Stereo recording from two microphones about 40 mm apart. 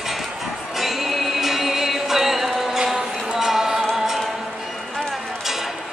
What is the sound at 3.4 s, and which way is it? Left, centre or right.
Music, centre.